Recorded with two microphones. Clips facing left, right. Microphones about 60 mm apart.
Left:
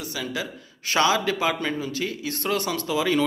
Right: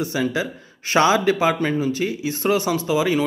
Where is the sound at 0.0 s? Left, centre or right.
Right.